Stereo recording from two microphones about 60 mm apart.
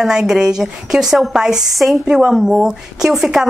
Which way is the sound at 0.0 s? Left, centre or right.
Centre.